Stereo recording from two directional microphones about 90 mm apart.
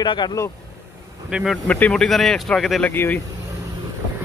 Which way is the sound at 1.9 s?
5° left (ahead or behind).